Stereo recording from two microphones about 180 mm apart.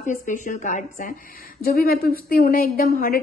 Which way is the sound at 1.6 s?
55° left (ahead or behind).